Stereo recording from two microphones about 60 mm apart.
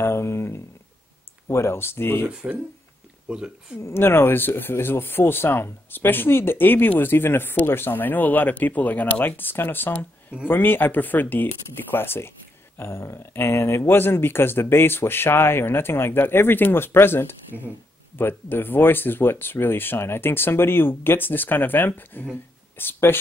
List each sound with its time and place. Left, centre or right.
0.0 s a sound: left
1.5 s speech: left
2.4 s speech: right
3.9 s speech: left